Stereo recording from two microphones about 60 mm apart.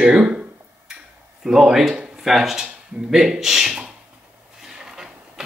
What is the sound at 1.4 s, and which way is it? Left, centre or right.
Speech, centre.